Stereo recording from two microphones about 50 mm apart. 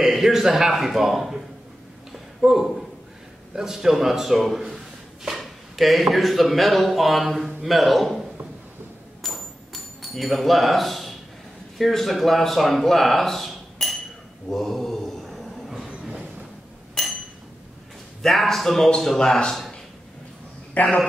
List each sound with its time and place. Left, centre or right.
0.0 s a man's voice: centre
2.4 s a man's voice: centre
9.2 s a sound: centre
11.8 s a man's voice: centre
14.5 s mantra: centre
15.9 s train: right
17.0 s a sound: centre
18.2 s a man's voice: centre